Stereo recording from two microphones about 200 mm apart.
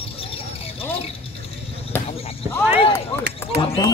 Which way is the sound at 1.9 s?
10° left (ahead or behind).